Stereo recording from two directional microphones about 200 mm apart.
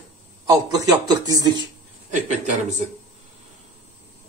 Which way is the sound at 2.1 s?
35° right (ahead or behind).